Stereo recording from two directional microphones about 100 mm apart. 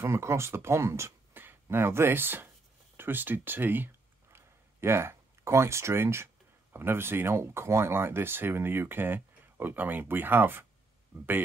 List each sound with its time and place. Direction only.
0.0 s speech: 30° right (ahead or behind)
3.0 s a sound: 20° right (ahead or behind)
6.7 s speech: 25° right (ahead or behind)